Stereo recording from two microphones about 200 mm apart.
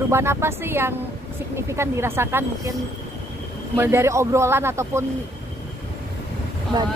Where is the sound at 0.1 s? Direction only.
15° right (ahead or behind).